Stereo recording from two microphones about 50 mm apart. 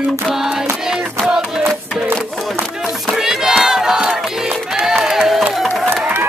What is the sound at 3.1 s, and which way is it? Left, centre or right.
Battle cry, centre.